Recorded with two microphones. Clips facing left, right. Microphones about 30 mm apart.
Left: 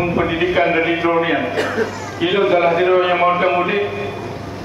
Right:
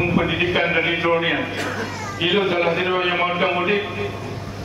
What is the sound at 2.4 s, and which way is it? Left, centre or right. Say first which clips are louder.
A man's voice: left 7 dB; centre.